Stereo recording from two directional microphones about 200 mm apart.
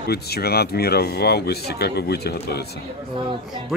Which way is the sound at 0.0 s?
50° left (ahead or behind).